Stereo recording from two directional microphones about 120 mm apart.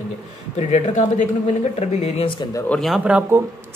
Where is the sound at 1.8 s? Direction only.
60° left (ahead or behind).